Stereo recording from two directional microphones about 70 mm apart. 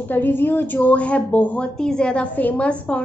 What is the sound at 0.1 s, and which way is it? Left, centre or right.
A woman's voice, left.